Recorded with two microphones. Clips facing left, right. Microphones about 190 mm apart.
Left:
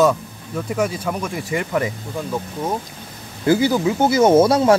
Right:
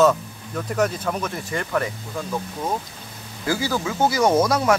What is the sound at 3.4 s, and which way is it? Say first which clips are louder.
Speech: left 8 dB; 20° left (ahead or behind).